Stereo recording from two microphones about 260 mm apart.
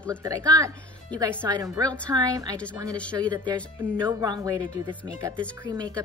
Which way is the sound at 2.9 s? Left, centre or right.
Centre.